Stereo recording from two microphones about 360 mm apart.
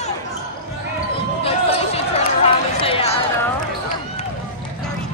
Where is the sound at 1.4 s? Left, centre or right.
Centre.